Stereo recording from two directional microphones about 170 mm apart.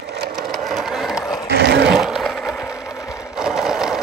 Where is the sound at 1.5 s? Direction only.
90° right.